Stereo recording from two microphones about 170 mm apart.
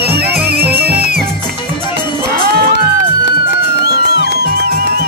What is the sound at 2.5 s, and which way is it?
Music, 75° right (ahead or behind).